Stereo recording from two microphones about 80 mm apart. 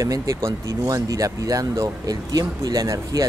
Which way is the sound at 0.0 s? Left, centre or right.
Right.